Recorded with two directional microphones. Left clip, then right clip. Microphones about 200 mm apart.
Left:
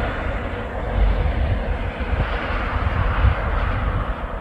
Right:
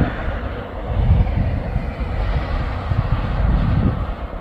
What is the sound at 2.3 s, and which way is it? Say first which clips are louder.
Vehicle: left 4 dB; 40° right (ahead or behind).